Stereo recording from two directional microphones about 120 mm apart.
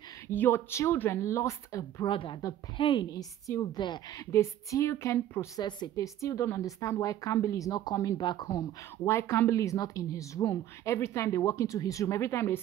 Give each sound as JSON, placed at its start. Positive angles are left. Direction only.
{"t": 0.3, "sound": "a woman's voice", "side_deg": 20}
{"t": 2.0, "sound": "speech", "side_deg": 45}
{"t": 3.1, "sound": "a woman's voice", "side_deg": 30}
{"t": 5.6, "sound": "a woman's voice", "side_deg": 35}